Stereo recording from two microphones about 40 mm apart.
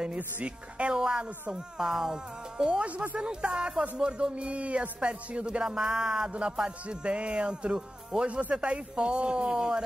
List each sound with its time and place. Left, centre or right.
0.4 s speech: right
1.0 s music: centre
2.6 s speech: right
5.6 s music: centre
6.9 s speech: right
7.7 s speech: centre
8.3 s speech: right